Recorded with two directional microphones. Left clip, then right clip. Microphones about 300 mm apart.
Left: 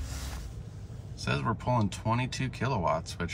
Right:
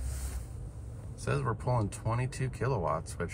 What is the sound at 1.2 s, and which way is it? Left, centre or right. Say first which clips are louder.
Speech: left 2 dB; centre.